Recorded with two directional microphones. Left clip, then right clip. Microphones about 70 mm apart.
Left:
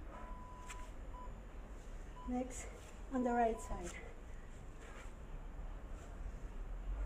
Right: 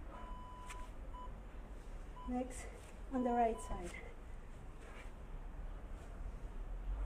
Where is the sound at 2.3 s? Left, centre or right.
Left.